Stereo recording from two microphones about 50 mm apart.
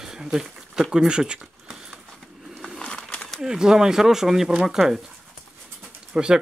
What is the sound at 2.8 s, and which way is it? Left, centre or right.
Crumpling, centre.